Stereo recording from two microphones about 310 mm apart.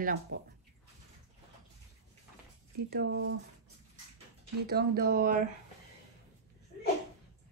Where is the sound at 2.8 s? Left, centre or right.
Right.